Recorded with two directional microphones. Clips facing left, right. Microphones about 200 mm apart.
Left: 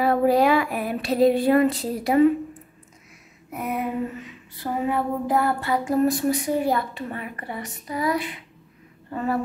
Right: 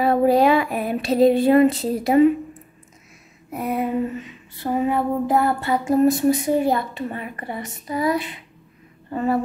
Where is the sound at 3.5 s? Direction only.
30° right (ahead or behind).